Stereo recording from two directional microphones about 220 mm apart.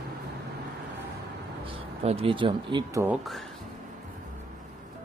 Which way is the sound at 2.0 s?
25° right (ahead or behind).